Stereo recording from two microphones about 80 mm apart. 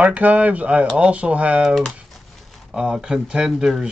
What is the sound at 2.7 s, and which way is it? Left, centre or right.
Speech, centre.